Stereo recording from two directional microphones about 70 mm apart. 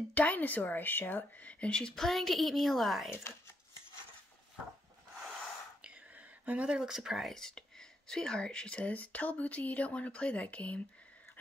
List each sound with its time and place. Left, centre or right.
0.1 s speech: left; by 3.1 s centre
5.9 s speech: right; by 10.8 s centre